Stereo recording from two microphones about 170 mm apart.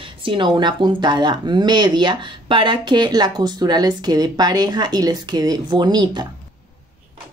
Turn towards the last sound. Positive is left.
turn(degrees=-25)  # may be behind; listen again after turning